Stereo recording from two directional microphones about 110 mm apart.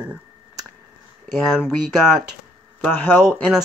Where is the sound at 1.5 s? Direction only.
5° right (ahead or behind).